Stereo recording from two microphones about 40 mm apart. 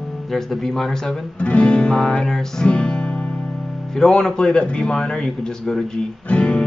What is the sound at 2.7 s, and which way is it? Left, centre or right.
Music, left.